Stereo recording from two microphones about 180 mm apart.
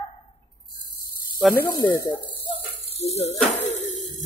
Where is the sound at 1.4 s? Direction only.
Centre (ahead or behind).